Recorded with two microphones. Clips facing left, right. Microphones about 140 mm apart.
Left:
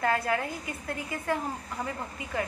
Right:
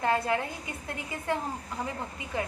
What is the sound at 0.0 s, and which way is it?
A woman's voice, 25° right (ahead or behind).